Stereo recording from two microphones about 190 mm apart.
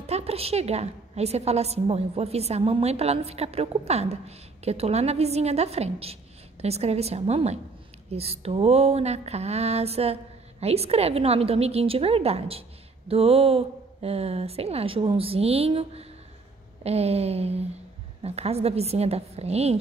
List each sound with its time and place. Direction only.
0.0 s a woman's voice: 35° right (ahead or behind)